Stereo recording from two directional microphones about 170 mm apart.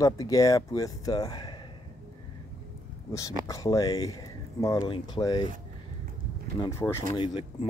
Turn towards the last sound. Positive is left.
turn(degrees=30)  # may be behind; listen again after turning